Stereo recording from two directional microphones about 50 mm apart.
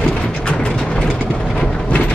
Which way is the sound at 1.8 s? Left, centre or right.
Left.